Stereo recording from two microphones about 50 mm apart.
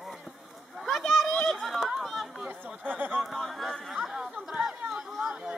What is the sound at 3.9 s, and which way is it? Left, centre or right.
Chatter, centre.